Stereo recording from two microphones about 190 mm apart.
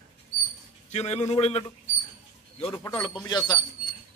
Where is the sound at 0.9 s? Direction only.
35° left (ahead or behind).